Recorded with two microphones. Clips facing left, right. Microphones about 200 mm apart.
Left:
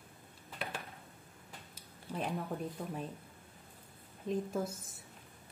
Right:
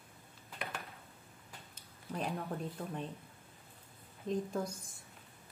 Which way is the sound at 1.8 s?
Centre (ahead or behind).